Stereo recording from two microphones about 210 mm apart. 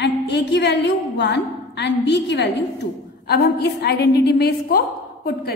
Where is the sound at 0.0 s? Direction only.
55° left (ahead or behind).